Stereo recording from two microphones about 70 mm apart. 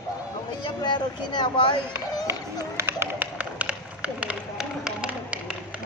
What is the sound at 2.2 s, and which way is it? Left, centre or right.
Run, right.